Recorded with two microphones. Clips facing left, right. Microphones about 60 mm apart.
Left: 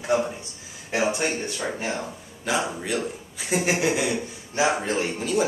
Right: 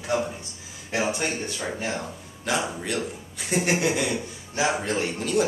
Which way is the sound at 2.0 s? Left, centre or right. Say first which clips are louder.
Left 2 dB; centre.